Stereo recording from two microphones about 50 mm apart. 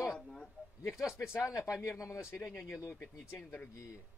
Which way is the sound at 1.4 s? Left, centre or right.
Left.